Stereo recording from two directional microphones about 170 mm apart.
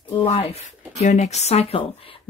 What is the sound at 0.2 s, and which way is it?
Speech, 35° left (ahead or behind).